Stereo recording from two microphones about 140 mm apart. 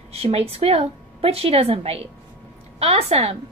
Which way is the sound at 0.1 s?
45° right (ahead or behind).